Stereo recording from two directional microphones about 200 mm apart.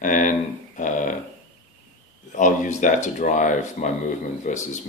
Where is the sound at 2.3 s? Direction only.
40° left (ahead or behind).